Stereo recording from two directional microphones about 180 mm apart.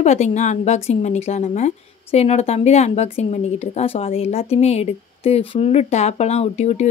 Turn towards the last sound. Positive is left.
turn(degrees=40)  # may be behind; listen again after turning